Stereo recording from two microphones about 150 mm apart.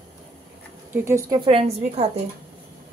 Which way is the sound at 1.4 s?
40° right (ahead or behind).